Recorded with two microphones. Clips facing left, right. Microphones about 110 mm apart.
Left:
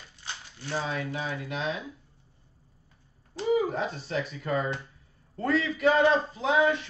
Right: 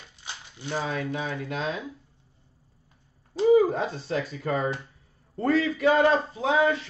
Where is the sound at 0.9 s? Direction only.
25° right (ahead or behind).